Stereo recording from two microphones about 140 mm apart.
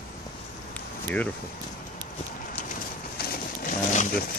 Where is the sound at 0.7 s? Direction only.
10° left (ahead or behind).